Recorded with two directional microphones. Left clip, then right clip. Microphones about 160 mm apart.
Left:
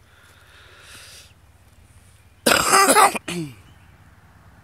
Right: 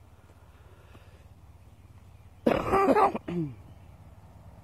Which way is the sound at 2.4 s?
15° left (ahead or behind).